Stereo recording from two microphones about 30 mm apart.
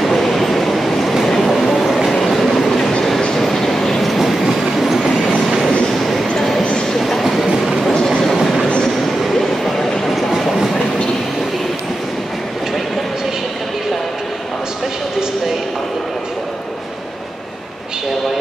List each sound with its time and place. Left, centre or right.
0.0 s train: centre
1.2 s train: centre
3.2 s train: left
3.4 s train: centre
4.2 s train: centre
5.9 s a sound: centre
7.0 s train: centre
7.4 s train: centre
9.3 s train: centre